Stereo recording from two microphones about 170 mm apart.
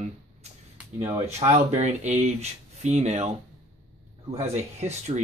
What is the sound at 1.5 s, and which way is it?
Speech, 40° right (ahead or behind).